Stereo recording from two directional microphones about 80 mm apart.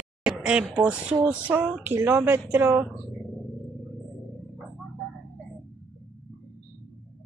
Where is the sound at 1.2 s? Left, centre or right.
Centre.